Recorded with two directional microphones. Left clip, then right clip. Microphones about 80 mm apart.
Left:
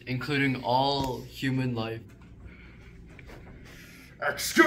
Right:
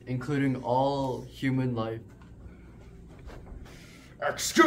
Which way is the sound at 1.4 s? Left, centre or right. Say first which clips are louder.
Even; centre.